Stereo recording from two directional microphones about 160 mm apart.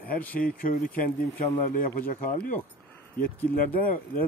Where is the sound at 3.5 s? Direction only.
65° left (ahead or behind).